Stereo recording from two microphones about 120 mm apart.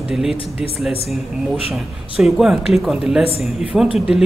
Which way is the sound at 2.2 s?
Centre (ahead or behind).